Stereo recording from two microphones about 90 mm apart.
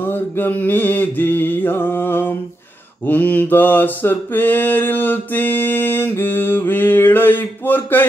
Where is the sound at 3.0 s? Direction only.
20° left (ahead or behind).